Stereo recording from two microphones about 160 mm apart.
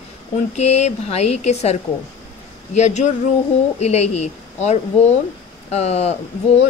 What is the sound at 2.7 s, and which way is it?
A woman's voice, 45° left (ahead or behind).